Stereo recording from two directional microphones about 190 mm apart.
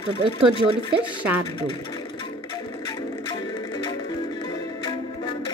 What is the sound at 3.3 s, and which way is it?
Music, 20° left (ahead or behind).